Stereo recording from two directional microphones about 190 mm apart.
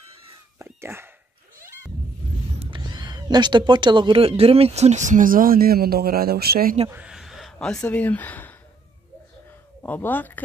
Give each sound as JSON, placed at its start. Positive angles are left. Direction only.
{"t": 0.6, "sound": "whispering", "side_deg": -15}
{"t": 2.6, "sound": "speech", "side_deg": -25}
{"t": 6.9, "sound": "a sound", "side_deg": -5}
{"t": 7.5, "sound": "speech", "side_deg": 5}
{"t": 9.8, "sound": "speech", "side_deg": 10}